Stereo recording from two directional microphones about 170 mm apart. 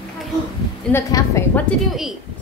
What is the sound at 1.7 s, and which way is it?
Speech, centre (ahead or behind).